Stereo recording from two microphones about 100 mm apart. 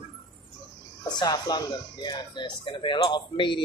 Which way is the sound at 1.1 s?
40° left (ahead or behind).